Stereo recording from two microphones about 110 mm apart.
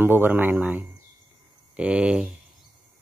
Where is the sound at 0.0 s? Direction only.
20° right (ahead or behind).